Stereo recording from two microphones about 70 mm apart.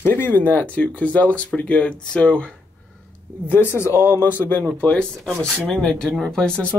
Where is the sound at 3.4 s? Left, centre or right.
Left.